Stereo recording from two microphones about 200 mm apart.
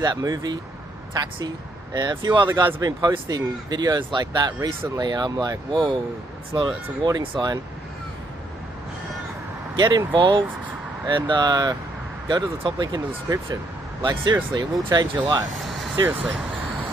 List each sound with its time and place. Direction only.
0.0 s speech: 20° right (ahead or behind)
2.0 s speech: 20° right (ahead or behind)
9.8 s speech: 20° right (ahead or behind)
15.6 s vehicle: centre (ahead or behind)
16.0 s speech: 5° right (ahead or behind)